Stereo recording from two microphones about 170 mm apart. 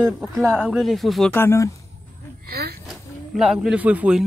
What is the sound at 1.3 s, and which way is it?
Speech, 15° left (ahead or behind).